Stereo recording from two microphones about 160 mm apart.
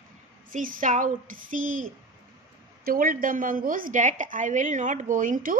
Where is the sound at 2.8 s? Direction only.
65° right (ahead or behind).